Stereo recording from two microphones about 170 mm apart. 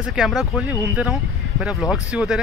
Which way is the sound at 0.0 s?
5° right (ahead or behind).